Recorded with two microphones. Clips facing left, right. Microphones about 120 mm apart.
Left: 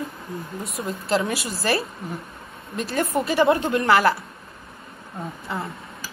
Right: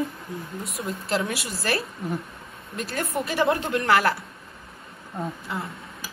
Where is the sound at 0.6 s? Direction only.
Centre (ahead or behind).